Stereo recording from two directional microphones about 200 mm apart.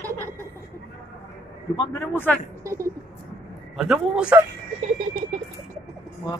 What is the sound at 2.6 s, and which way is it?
Speech, 15° right (ahead or behind).